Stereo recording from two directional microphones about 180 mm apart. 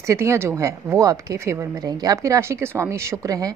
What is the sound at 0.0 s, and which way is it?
A woman's voice, 15° right (ahead or behind).